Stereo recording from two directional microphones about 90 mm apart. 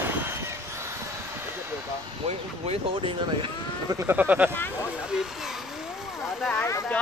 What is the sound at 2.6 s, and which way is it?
Speech, 85° right.